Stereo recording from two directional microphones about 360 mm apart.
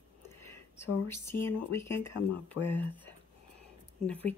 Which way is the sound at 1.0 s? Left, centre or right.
Centre.